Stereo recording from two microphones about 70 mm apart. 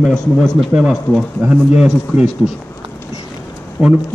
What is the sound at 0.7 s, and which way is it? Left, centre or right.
A man's voice, centre.